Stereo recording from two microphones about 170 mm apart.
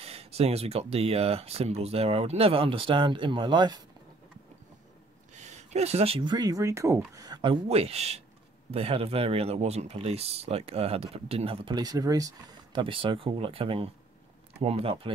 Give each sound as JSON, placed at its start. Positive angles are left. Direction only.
{"t": 0.0, "sound": "speech", "side_deg": -35}
{"t": 5.4, "sound": "speech", "side_deg": -40}
{"t": 7.6, "sound": "speech", "side_deg": -35}